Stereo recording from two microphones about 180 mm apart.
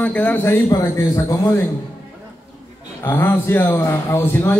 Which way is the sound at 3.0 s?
15° left (ahead or behind).